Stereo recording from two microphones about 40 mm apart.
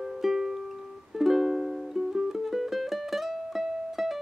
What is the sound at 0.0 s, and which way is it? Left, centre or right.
Music, centre.